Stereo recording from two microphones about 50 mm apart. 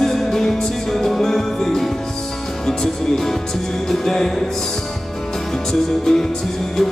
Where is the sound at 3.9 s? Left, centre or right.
Centre.